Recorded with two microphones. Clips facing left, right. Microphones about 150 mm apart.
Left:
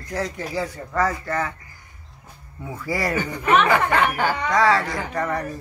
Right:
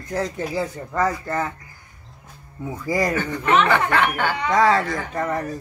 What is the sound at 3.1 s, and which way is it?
A man's voice, 10° left (ahead or behind).